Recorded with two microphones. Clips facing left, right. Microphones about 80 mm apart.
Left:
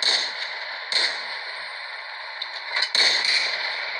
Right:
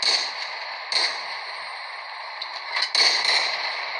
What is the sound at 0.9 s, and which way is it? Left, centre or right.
Fireworks, left.